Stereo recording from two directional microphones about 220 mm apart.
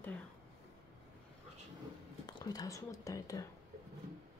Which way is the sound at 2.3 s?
20° left (ahead or behind).